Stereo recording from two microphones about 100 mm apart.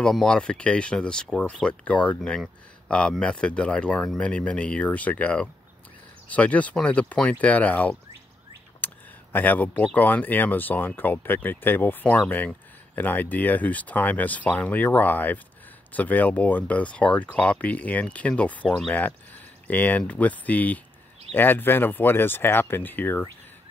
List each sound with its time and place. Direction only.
0.0 s speech: 5° left (ahead or behind)
8.8 s a sound: 20° left (ahead or behind)
9.9 s speech: 15° left (ahead or behind)